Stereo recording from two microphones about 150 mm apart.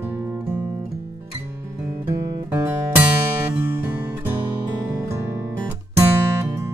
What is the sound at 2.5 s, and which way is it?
Music, 15° right (ahead or behind).